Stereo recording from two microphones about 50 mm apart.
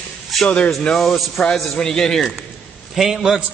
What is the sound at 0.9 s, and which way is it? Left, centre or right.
A man's voice, centre.